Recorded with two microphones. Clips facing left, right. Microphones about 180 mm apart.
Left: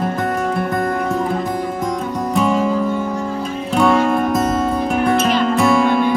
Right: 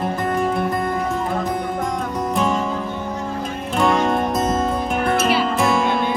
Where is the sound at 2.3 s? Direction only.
Centre (ahead or behind).